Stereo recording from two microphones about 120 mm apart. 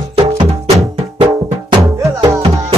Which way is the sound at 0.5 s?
60° right (ahead or behind).